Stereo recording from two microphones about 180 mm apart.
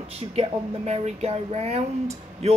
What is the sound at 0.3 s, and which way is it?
Speech, 35° right (ahead or behind).